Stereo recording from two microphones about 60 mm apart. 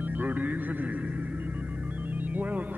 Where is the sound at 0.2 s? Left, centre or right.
Right.